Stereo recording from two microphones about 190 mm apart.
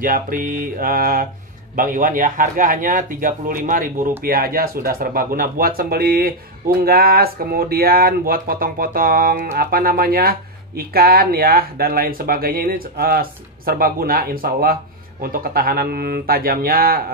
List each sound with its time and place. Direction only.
0.0 s speech: 45° right (ahead or behind)